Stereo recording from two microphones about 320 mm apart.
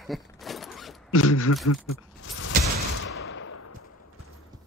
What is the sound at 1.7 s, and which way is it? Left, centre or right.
Mechanisms, left.